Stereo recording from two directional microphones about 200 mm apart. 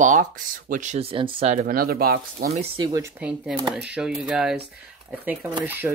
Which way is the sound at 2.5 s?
30° right (ahead or behind).